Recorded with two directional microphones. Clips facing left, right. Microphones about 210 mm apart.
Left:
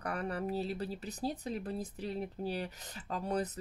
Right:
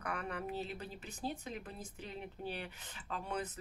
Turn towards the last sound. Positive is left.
turn(degrees=40)  # may be behind; listen again after turning